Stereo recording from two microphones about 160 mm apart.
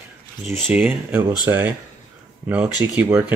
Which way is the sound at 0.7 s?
10° right (ahead or behind).